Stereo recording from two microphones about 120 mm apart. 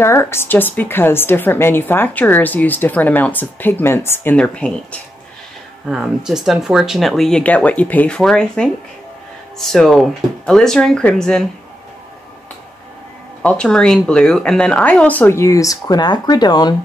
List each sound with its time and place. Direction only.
0.0 s a woman's voice: 20° left (ahead or behind)
5.9 s speech: 5° right (ahead or behind)
13.4 s a woman's voice: 10° left (ahead or behind); by 16.7 s 35° left (ahead or behind)